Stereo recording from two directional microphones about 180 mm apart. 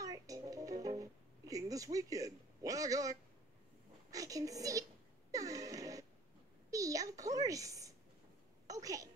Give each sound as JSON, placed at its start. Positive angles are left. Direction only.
{"t": 0.0, "sound": "music", "side_deg": -20}
{"t": 4.1, "sound": "a woman's voice", "side_deg": -20}
{"t": 5.3, "sound": "a sound", "side_deg": -20}